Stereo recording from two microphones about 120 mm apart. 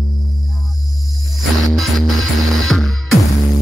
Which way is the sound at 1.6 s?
Centre (ahead or behind).